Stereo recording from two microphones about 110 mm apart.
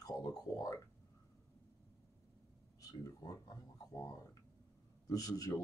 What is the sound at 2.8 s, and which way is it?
Speech, 30° left (ahead or behind).